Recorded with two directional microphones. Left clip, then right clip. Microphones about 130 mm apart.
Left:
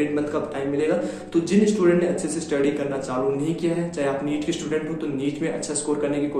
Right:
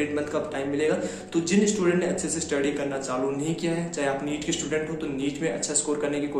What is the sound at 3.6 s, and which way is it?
Speech, 25° right (ahead or behind).